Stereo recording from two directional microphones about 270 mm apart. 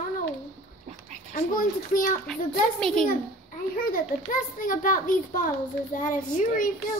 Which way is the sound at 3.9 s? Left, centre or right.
Left.